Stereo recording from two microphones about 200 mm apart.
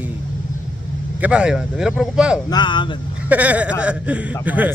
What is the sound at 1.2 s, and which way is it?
Speech, 5° right (ahead or behind).